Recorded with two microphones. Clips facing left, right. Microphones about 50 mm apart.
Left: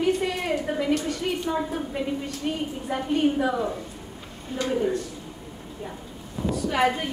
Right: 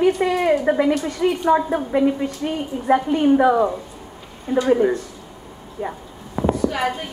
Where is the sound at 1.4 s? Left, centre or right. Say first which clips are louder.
Right 10 dB; right.